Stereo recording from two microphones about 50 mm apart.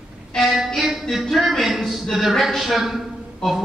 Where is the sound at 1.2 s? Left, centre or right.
Centre.